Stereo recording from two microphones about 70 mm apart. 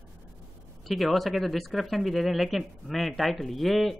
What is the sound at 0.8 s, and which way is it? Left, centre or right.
Speech, centre.